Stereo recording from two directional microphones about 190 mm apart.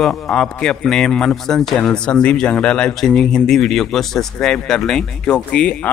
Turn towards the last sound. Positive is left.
turn(degrees=5)  # may be behind; listen again after turning